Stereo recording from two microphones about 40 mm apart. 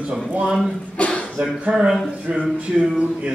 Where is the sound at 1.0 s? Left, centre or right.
Left.